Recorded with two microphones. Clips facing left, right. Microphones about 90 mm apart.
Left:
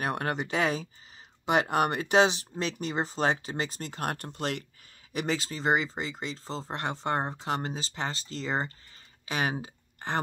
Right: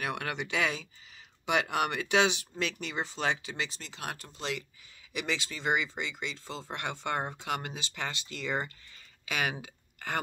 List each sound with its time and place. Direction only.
0.0 s speech: 40° left (ahead or behind)
5.1 s speech: 40° left (ahead or behind)